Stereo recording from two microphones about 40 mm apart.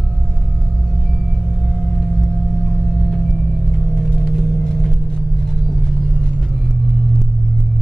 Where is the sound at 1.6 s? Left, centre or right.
Centre.